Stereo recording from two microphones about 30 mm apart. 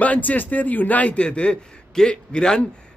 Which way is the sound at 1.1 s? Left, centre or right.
Left.